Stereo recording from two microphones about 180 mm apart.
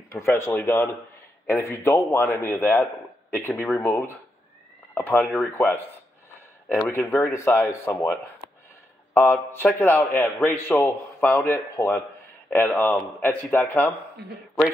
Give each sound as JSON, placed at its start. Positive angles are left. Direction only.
{"t": 0.4, "sound": "a man's voice", "side_deg": 15}
{"t": 9.1, "sound": "a man's voice", "side_deg": 15}